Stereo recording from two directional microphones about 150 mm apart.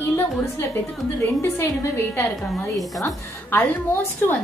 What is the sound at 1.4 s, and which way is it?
A woman's voice, 20° left (ahead or behind).